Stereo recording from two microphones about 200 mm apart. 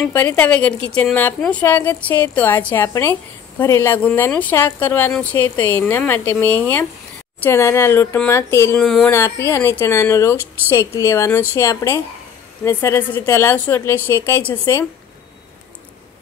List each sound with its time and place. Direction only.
0.0 s a woman's voice: 10° left (ahead or behind)
8.8 s speech: centre (ahead or behind)
9.1 s a woman's voice: 15° left (ahead or behind)